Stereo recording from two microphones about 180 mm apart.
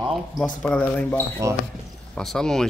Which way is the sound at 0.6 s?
5° left (ahead or behind).